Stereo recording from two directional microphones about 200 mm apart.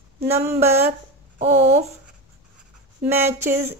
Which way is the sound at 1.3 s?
35° right (ahead or behind).